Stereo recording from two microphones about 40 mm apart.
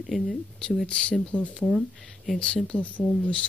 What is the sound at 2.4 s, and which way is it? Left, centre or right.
Speech, centre.